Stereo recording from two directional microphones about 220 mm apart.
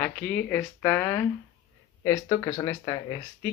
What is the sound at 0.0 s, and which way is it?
Speech, 5° left (ahead or behind).